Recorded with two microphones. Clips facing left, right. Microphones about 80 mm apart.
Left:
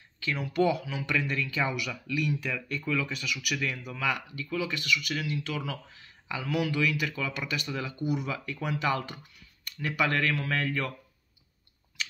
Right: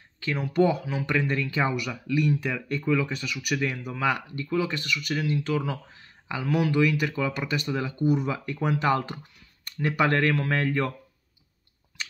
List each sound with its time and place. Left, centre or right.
0.2 s speech: right